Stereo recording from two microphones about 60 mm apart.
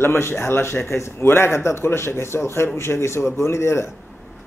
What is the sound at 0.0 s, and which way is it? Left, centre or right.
Speech, left.